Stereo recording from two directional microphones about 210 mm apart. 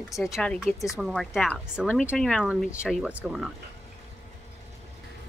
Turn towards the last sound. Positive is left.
turn(degrees=0)  # may be behind; listen again after turning